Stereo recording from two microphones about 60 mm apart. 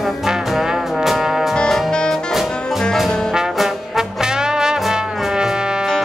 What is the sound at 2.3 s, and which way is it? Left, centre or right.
Music, centre.